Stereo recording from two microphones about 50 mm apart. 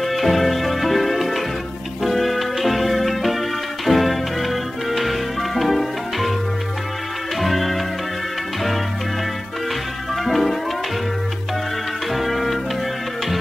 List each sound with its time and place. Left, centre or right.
0.0 s music: centre
7.3 s music: centre
10.2 s music: centre
12.1 s music: centre